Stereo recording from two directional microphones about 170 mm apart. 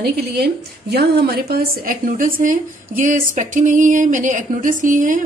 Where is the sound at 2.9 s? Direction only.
45° right (ahead or behind).